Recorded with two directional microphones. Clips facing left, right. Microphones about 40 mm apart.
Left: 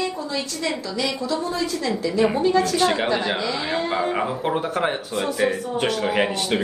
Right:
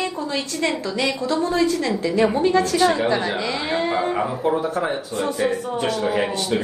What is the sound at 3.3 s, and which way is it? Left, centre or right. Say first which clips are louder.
Speech: right 1 dB; right.